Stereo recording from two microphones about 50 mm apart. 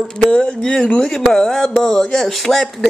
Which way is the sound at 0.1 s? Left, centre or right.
Left.